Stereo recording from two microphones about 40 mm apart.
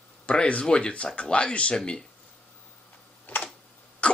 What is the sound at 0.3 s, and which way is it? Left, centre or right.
Speech, left.